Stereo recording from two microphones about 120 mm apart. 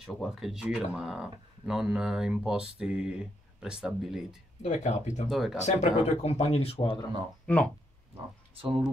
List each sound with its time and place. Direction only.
0.0 s speech: centre (ahead or behind)
4.6 s speech: 75° left (ahead or behind)
5.3 s speech: centre (ahead or behind)
5.6 s speech: 65° left (ahead or behind)
6.8 s speech: 40° left (ahead or behind)
7.5 s speech: 10° left (ahead or behind)
8.5 s speech: 45° right (ahead or behind)